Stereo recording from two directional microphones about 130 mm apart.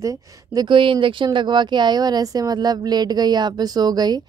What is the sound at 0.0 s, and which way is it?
Speech, 25° right (ahead or behind).